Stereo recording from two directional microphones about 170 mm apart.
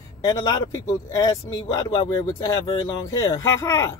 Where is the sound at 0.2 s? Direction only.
20° left (ahead or behind).